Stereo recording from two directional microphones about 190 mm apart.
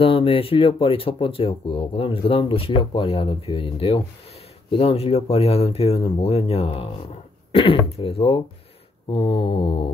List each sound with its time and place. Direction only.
0.0 s speech: 30° left (ahead or behind)